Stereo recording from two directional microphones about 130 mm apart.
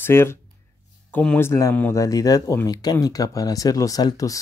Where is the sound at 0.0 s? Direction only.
20° left (ahead or behind).